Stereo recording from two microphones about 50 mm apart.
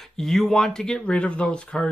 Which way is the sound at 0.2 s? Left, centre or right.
Centre.